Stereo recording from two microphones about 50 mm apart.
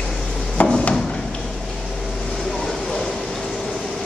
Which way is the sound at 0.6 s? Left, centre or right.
Left.